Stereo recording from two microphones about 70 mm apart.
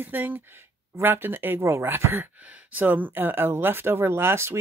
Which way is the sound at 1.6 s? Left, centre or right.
Right.